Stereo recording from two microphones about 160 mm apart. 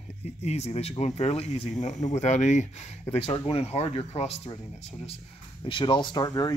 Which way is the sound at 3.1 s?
35° left (ahead or behind).